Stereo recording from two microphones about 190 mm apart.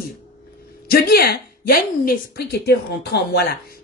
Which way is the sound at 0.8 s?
55° left (ahead or behind).